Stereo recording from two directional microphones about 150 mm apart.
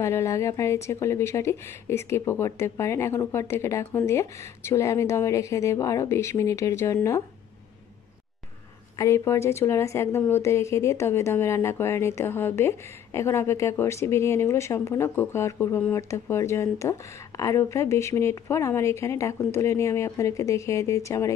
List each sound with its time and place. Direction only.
0.0 s speech: 20° left (ahead or behind)
8.9 s a woman's voice: 20° left (ahead or behind)